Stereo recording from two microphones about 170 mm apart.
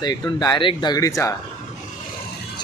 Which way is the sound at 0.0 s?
20° left (ahead or behind).